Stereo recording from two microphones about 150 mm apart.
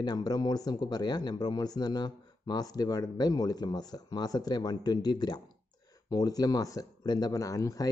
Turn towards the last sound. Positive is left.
turn(degrees=20)  # may be behind; listen again after turning